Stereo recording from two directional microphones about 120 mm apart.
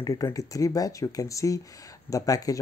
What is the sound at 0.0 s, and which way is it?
Speech, 30° left (ahead or behind).